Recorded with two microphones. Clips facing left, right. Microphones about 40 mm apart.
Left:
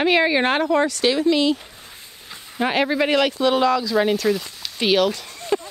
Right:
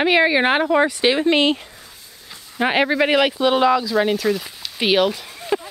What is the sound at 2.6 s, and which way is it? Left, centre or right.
Speech, centre.